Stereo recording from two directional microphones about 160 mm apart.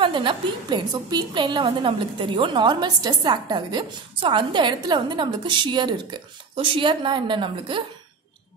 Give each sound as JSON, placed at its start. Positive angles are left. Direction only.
{"t": 0.0, "sound": "a woman's voice", "side_deg": -30}